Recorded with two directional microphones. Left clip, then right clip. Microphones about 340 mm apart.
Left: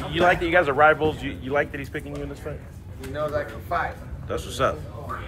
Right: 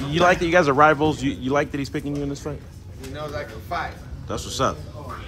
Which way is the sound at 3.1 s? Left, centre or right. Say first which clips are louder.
Left 5 dB; centre.